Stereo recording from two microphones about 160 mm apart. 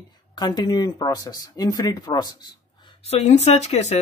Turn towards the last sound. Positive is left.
turn(degrees=45)  # may be behind; listen again after turning